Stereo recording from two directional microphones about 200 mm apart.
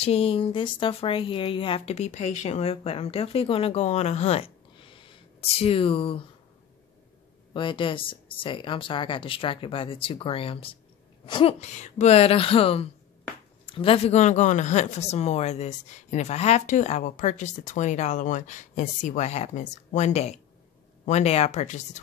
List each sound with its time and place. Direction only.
0.0 s speech: 30° left (ahead or behind)
7.5 s speech: 25° left (ahead or behind)